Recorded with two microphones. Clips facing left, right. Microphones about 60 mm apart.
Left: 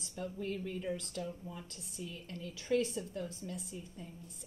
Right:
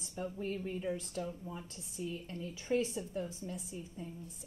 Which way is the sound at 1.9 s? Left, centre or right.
Centre.